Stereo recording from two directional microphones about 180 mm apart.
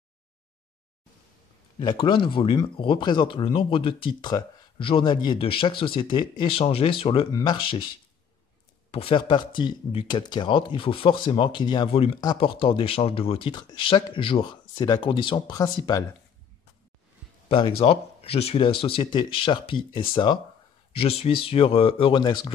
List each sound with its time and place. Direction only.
1.8 s speech: 25° left (ahead or behind)
8.9 s speech: 30° left (ahead or behind)
17.5 s speech: 30° left (ahead or behind)